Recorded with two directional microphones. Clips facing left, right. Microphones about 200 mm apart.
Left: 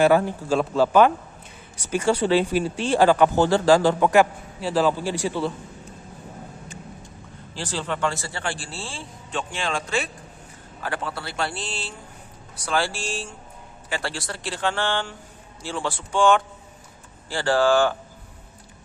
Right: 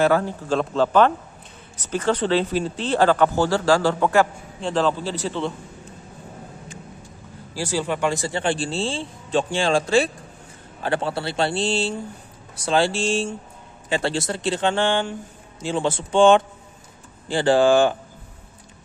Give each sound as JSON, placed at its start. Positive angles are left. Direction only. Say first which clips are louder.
{"t": 0.0, "sound": "speech", "louder": "left 1 dB", "side_deg": 15}
{"t": 7.5, "sound": "a man's voice", "louder": "right 5 dB", "side_deg": -10}